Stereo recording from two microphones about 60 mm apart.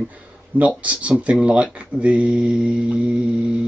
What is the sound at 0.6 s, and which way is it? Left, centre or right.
Speech, right.